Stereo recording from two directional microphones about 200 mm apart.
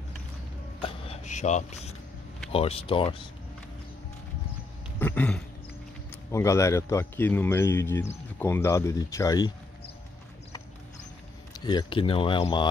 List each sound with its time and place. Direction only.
0.7 s vehicle: 30° left (ahead or behind)
2.5 s speech: 30° left (ahead or behind)
4.9 s speech: 10° left (ahead or behind)
11.5 s speech: 20° left (ahead or behind)